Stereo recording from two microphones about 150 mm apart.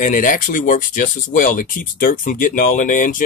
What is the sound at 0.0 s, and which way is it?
Speech, 65° left (ahead or behind).